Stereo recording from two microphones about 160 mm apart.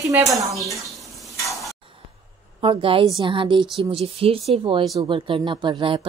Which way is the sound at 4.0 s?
35° right (ahead or behind).